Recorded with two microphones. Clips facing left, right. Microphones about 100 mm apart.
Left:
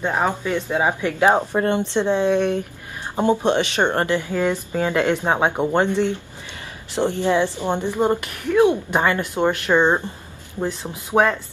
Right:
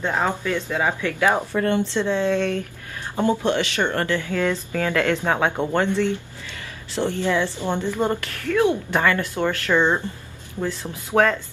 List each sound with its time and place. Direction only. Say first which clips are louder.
0.0 s a woman's voice: left 2 dB; 15° left (ahead or behind)